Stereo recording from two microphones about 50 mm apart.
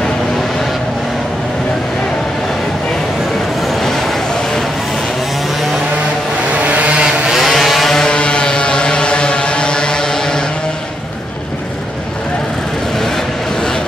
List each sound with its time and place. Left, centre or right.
6.5 s vehicle: right
7.3 s vehicle: centre